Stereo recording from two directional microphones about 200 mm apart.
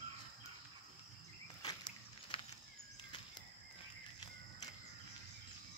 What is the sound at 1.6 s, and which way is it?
Walk, 20° left (ahead or behind).